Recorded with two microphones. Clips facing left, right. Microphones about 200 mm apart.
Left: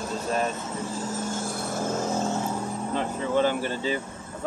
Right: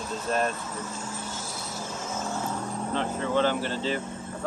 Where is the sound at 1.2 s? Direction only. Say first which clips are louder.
Left 7 dB; 50° left (ahead or behind).